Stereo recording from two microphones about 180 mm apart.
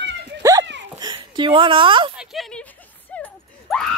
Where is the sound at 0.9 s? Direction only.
25° right (ahead or behind).